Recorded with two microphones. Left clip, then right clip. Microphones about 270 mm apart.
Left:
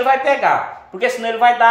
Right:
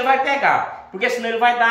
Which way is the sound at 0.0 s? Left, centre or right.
Left.